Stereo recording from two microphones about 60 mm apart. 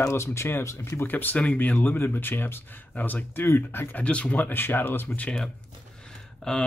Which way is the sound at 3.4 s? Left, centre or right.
Left.